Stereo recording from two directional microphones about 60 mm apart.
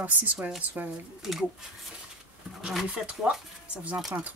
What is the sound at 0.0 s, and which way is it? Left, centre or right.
Speech, right.